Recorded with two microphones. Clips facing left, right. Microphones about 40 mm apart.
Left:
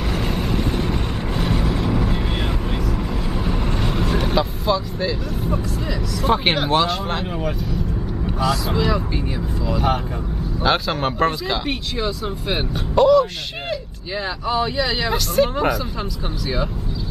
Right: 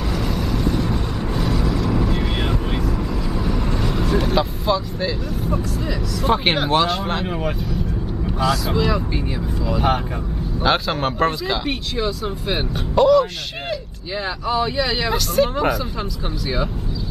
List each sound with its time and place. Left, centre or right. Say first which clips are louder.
0.2 s vehicle: right 1 dB; left; by 4.4 s centre
4.4 s speech: even; centre
8.4 s speech: right 1 dB; centre